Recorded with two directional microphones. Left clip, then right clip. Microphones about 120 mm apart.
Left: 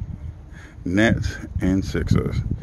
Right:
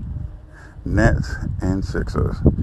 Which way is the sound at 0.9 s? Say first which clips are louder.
Even; 80° left.